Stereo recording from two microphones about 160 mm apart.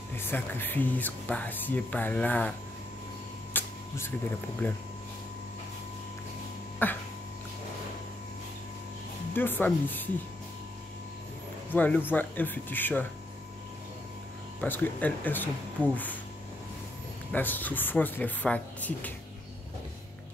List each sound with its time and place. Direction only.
0.1 s speech: 15° left (ahead or behind)
3.5 s a sound: 15° left (ahead or behind)
4.6 s speech: 10° left (ahead or behind)
6.8 s speech: 10° left (ahead or behind)
9.3 s speech: 15° left (ahead or behind)
11.7 s speech: 10° left (ahead or behind)
14.6 s speech: 10° left (ahead or behind)
17.3 s speech: 10° left (ahead or behind)